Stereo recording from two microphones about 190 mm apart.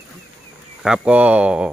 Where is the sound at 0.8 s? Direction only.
5° right (ahead or behind).